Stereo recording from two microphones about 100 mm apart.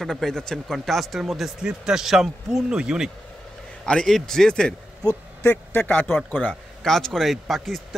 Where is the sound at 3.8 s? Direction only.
10° left (ahead or behind).